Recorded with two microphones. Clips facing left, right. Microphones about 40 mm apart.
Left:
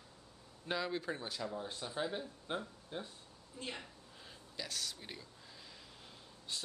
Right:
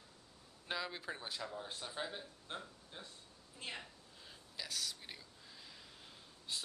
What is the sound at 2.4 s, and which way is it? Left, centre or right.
Speech, centre.